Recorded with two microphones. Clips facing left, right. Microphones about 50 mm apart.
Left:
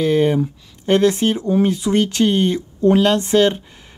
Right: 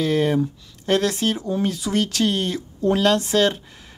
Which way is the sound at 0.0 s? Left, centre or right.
Centre.